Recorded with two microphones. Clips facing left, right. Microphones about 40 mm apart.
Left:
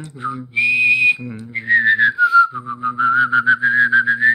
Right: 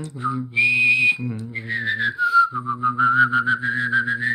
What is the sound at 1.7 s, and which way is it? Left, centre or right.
Whistling, left.